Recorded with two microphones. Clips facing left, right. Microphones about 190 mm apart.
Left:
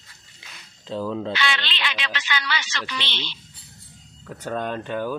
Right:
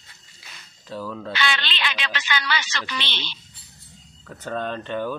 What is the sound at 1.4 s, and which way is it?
A woman's voice, 45° right (ahead or behind).